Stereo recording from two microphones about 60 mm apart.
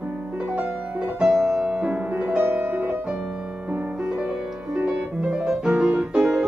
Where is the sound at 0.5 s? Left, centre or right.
Centre.